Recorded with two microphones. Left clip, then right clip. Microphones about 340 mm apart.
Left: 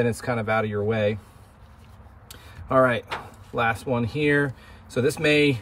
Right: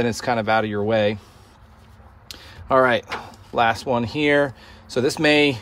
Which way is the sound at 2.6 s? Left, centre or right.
Right.